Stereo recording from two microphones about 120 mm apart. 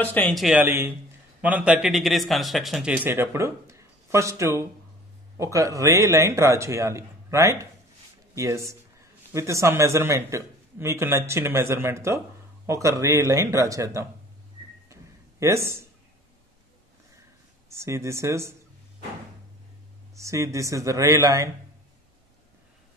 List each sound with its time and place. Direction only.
0.0 s speech: 15° left (ahead or behind)
0.5 s a man's voice: 15° right (ahead or behind); by 2.9 s centre (ahead or behind)
2.9 s speech: 15° right (ahead or behind)
14.9 s a sound: 25° right (ahead or behind)
17.6 s speech: 25° right (ahead or behind)
20.2 s speech: 25° right (ahead or behind)